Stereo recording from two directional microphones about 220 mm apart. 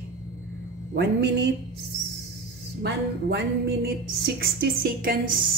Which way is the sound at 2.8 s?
50° right (ahead or behind).